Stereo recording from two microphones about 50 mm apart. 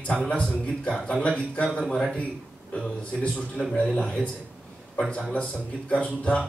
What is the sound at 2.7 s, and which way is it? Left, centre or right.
Speech, left.